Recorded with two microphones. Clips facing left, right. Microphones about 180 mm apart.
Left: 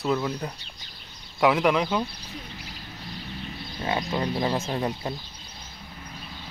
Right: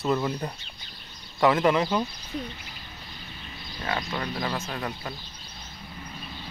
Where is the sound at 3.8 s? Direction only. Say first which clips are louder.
Left 4 dB; 25° left (ahead or behind).